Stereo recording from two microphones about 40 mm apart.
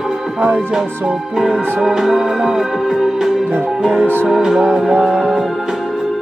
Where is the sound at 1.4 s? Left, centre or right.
Centre.